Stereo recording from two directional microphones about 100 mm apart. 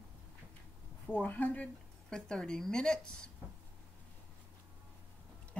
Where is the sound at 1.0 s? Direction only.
15° left (ahead or behind).